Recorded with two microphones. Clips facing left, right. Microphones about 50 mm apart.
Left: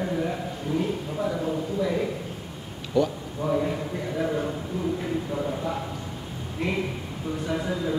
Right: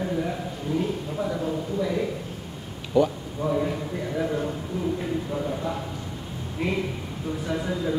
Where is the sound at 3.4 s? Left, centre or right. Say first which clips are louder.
Even; centre.